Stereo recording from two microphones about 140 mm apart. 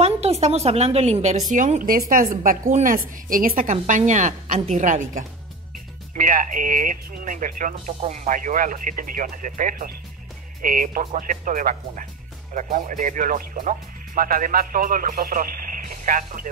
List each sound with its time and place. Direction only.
0.0 s a woman's voice: 50° right (ahead or behind)
1.5 s speech: 65° right (ahead or behind); by 2.2 s 90° right
2.4 s a woman's voice: 75° right (ahead or behind)
6.1 s speech: 75° right (ahead or behind)